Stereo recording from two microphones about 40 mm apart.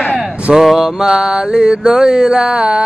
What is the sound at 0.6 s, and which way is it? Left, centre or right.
Mantra, centre.